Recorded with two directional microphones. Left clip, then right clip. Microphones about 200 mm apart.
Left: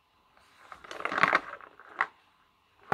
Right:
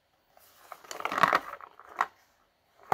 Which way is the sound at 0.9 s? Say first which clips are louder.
Even; centre (ahead or behind).